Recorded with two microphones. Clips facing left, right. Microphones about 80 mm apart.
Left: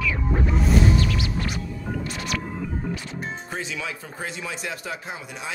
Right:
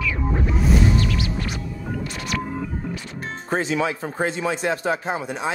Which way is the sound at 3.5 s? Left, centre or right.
Right.